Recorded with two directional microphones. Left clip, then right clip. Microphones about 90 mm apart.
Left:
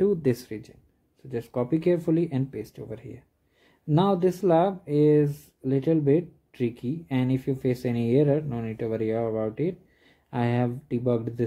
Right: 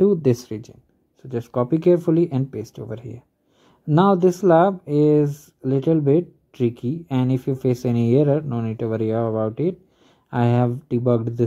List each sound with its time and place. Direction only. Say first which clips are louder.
0.0 s speech: right 6 dB; 25° right (ahead or behind)